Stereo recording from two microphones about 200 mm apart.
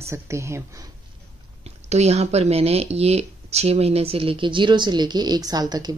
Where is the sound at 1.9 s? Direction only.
30° right (ahead or behind).